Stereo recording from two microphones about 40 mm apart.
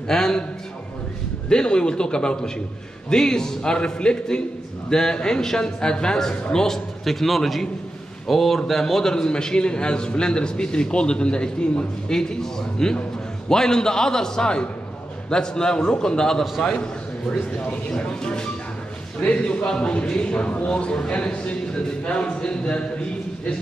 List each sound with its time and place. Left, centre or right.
0.1 s a man's voice: centre
1.5 s a man's voice: left
17.9 s a man's voice: left
19.1 s a man's voice: left